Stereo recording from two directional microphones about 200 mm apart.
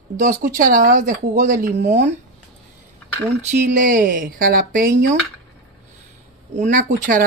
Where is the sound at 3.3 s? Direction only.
35° right (ahead or behind).